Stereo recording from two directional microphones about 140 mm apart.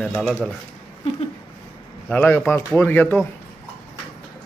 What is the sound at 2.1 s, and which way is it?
A man's voice, 15° left (ahead or behind).